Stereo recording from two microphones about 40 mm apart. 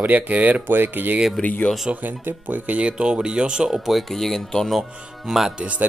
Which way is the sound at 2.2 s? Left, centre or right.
Right.